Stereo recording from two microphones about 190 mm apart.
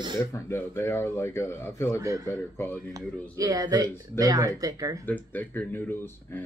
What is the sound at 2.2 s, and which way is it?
Speech, 10° left (ahead or behind).